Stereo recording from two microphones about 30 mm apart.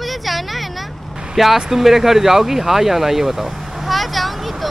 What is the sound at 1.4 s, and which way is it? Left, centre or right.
Speech, centre.